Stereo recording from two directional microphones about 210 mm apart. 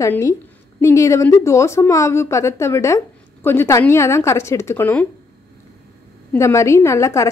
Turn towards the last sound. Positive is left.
turn(degrees=15)  # may be behind; listen again after turning